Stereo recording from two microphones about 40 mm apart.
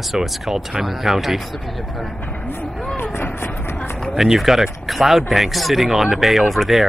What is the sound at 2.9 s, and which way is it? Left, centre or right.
Vehicle, left.